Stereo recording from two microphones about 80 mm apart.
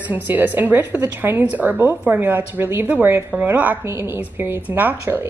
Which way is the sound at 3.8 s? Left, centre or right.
Right.